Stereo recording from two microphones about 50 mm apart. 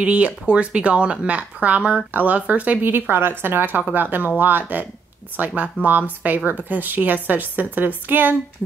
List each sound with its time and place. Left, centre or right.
0.0 s speech: right
2.8 s a woman's voice: right